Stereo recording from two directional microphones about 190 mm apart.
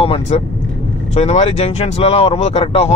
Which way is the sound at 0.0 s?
30° left (ahead or behind).